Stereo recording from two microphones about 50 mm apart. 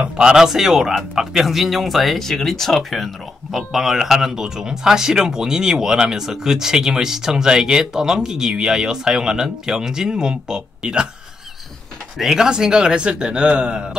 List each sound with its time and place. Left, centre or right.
0.0 s a man's voice: centre
12.2 s speech: centre